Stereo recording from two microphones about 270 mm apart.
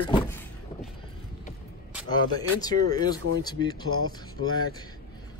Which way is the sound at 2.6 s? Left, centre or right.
Centre.